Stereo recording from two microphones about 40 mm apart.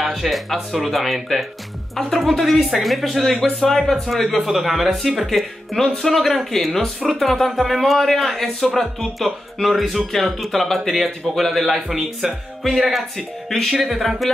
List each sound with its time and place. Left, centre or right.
0.0 s a sound: centre
0.7 s speech: centre
4.4 s speech: centre